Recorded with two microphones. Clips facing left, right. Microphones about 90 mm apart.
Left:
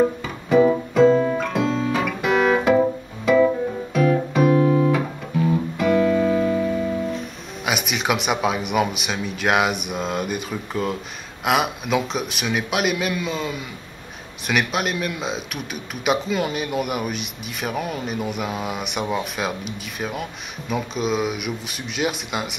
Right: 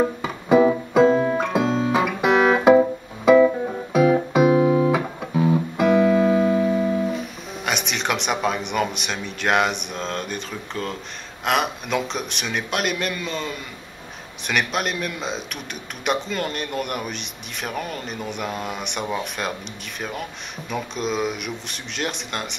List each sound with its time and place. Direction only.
0.2 s music: 10° right (ahead or behind)
1.6 s music: 40° right (ahead or behind)
1.9 s music: 5° right (ahead or behind)
3.9 s music: 10° right (ahead or behind)
7.1 s speech: centre (ahead or behind)